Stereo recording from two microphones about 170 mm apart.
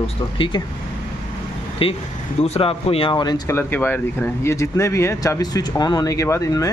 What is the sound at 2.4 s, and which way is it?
Speech, 35° left (ahead or behind).